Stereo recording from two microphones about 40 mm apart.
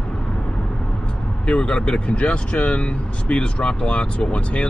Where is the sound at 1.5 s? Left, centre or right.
Left.